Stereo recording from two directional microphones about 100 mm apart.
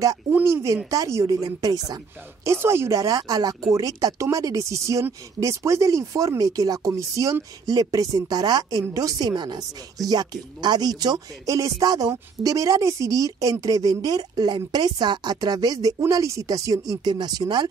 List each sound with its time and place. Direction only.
0.3 s speech: 25° right (ahead or behind); by 17.6 s 45° right (ahead or behind)